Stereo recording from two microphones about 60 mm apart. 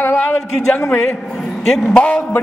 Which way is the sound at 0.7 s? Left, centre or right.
Centre.